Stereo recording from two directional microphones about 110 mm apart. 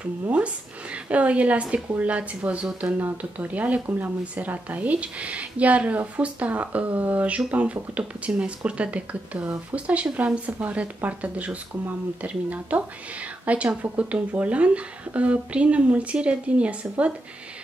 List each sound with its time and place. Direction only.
1.0 s speech: 10° right (ahead or behind)